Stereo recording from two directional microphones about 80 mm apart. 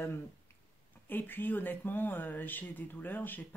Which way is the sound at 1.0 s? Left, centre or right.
Left.